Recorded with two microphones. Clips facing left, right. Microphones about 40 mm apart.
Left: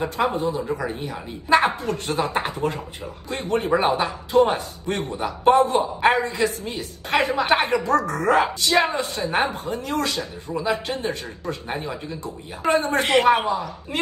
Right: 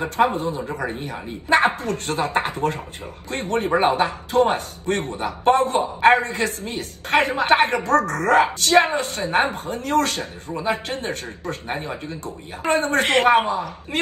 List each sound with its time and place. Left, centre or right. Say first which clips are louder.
0.2 s a woman's voice: right 4 dB; right
10.5 s speech: even; right
10.9 s a woman's voice: left 1 dB; right
12.7 s a woman's voice: right 1 dB; right